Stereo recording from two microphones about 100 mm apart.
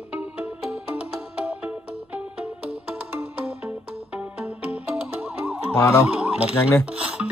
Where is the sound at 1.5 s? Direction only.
15° right (ahead or behind).